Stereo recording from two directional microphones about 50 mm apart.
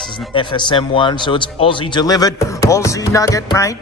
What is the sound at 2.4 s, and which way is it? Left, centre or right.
Speech, left.